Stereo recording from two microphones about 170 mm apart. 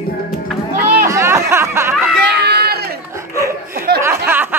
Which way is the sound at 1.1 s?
15° right (ahead or behind).